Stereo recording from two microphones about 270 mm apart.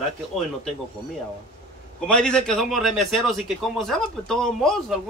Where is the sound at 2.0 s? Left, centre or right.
Centre.